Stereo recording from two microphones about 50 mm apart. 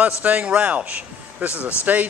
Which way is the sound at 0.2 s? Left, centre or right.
Right.